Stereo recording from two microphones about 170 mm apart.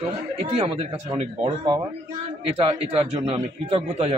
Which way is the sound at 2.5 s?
35° right (ahead or behind).